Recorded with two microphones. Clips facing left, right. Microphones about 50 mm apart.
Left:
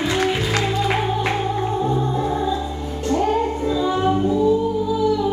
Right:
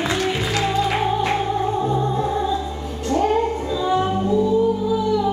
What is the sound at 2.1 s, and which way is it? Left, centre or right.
Music, centre.